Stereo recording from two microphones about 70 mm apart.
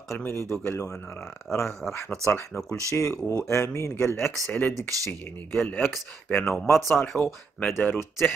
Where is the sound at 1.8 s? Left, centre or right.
Left.